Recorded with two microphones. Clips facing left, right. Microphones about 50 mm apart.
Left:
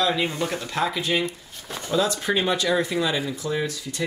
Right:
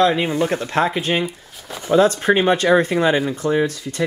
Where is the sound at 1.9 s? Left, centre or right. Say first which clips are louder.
Right 9 dB; right.